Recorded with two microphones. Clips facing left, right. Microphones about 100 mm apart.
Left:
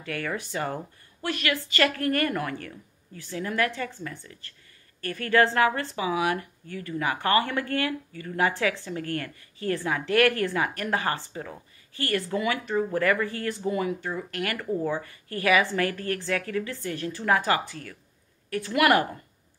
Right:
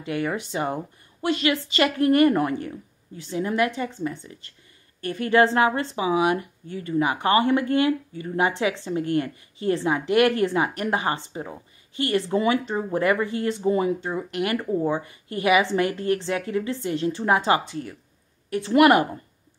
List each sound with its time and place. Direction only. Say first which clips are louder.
0.0 s a woman's voice: right 5 dB; 20° right (ahead or behind)